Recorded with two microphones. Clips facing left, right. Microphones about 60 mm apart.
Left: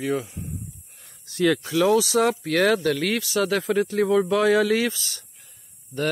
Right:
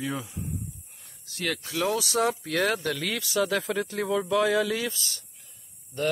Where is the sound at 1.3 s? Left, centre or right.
Left.